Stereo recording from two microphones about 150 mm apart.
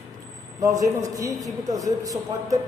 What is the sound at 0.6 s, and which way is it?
A man's voice, 20° right (ahead or behind).